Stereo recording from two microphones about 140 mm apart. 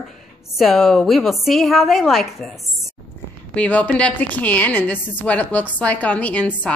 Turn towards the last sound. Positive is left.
turn(degrees=10)  # may be behind; listen again after turning